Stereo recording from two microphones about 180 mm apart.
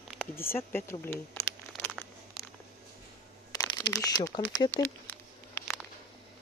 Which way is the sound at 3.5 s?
25° left (ahead or behind).